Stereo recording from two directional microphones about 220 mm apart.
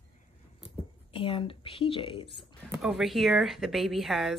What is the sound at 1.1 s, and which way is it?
A woman's voice, 25° left (ahead or behind).